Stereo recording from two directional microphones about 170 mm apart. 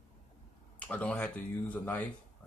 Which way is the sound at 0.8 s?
5° left (ahead or behind).